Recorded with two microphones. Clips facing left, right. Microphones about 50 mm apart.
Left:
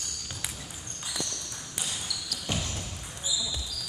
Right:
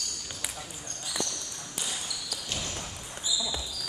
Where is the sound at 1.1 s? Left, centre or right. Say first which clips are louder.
Right 2 dB; centre.